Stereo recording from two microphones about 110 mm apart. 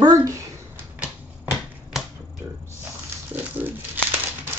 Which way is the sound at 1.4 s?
5° right (ahead or behind).